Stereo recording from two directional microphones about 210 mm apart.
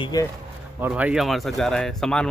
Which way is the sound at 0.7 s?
10° right (ahead or behind).